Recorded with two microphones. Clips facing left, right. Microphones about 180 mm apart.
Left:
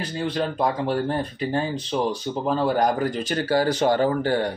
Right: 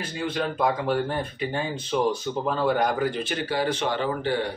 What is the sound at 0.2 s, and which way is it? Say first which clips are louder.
Speech: left 1 dB; 35° left (ahead or behind).